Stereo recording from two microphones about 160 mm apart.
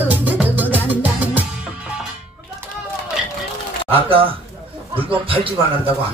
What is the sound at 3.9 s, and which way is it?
Speech, 35° right (ahead or behind).